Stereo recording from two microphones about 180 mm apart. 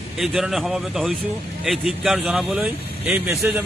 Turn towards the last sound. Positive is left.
turn(degrees=-5)  # may be behind; listen again after turning